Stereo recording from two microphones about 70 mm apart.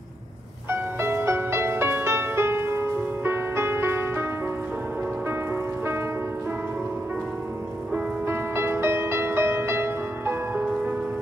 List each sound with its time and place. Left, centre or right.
0.7 s music: right
8.3 s music: right